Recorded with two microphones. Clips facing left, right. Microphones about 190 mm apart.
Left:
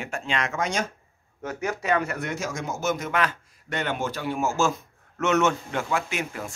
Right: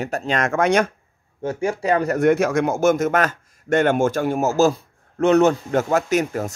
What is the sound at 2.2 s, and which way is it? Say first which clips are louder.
Speech: right 14 dB; 60° right (ahead or behind).